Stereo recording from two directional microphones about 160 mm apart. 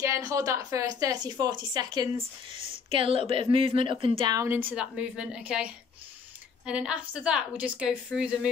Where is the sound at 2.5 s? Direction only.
45° left (ahead or behind).